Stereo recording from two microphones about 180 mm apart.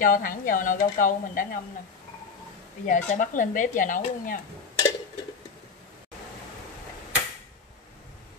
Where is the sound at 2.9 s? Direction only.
45° left (ahead or behind).